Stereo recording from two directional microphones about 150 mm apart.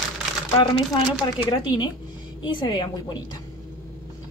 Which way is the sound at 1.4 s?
30° left (ahead or behind).